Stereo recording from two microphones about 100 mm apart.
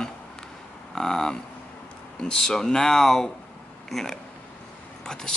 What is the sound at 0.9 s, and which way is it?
Speech, 5° left (ahead or behind).